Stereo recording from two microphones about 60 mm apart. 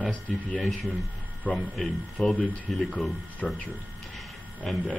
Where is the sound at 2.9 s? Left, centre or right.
Centre.